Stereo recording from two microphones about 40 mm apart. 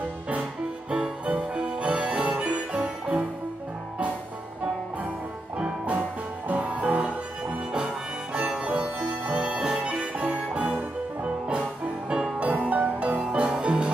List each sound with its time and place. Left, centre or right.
0.8 s music: right
1.2 s music: right
5.9 s music: right
7.7 s harmonica: right
8.6 s music: right
13.2 s music: right